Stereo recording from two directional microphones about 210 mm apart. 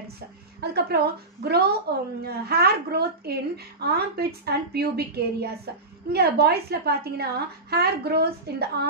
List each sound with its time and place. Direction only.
0.6 s a woman's voice: 50° right (ahead or behind)